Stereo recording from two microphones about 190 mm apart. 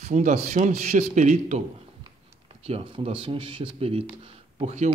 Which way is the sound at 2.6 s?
35° right (ahead or behind).